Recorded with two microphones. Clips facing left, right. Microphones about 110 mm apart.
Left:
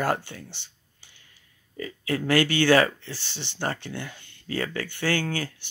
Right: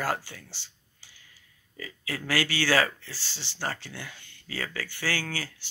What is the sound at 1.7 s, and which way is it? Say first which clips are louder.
Speech: left 8 dB; 30° left (ahead or behind).